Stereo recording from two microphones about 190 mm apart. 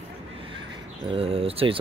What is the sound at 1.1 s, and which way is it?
Speech, 30° right (ahead or behind).